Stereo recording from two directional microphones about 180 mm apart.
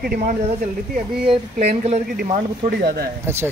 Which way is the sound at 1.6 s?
40° right (ahead or behind).